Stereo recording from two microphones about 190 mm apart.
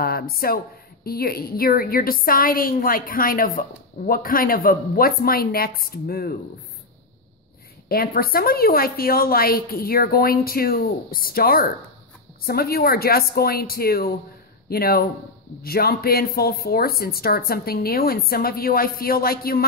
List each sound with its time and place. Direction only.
0.0 s a woman's voice: 50° left (ahead or behind)
7.9 s a woman's voice: 50° left (ahead or behind)